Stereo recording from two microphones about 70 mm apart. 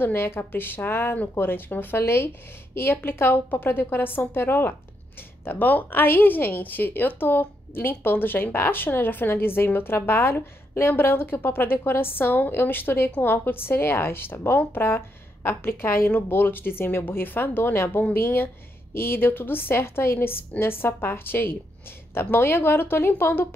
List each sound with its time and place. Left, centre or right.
0.0 s a woman's voice: left